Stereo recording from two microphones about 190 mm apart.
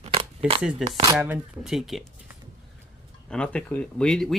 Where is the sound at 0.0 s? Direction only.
30° right (ahead or behind).